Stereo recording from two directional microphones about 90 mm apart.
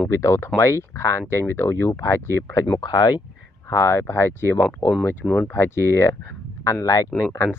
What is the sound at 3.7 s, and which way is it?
Speech, 35° left (ahead or behind).